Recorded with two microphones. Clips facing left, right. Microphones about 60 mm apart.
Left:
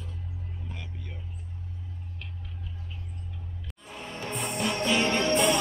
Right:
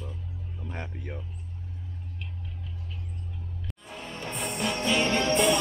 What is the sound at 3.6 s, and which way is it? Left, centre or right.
Music, centre.